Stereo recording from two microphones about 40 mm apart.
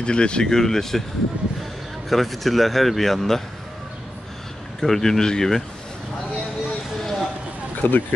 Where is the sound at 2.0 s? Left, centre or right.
Centre.